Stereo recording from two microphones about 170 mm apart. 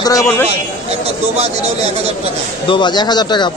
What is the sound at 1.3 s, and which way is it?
Speech, 40° right (ahead or behind).